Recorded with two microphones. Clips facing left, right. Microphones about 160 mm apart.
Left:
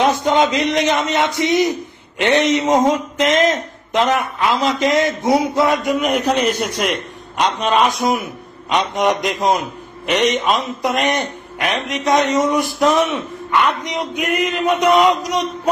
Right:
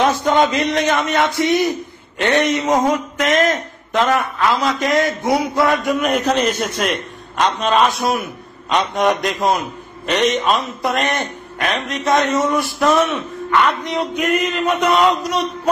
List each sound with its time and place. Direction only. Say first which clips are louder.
0.0 s a man's voice: even; 20° left (ahead or behind)